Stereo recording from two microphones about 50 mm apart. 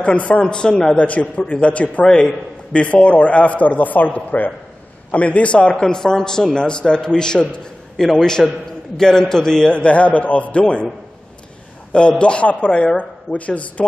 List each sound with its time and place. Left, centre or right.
0.0 s speech: left
1.0 s a man's voice: left
2.0 s a man's voice: centre
2.7 s a man's voice: left
11.9 s speech: left